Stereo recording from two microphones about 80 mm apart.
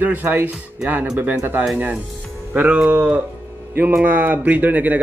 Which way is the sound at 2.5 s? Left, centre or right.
Centre.